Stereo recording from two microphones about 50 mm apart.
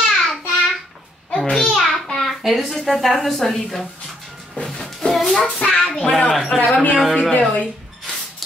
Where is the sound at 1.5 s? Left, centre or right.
Centre.